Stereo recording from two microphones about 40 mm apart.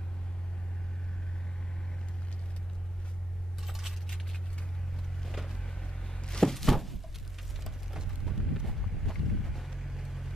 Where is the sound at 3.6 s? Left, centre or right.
Centre.